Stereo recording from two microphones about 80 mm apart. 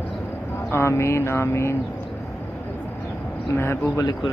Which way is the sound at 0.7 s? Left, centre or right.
Left.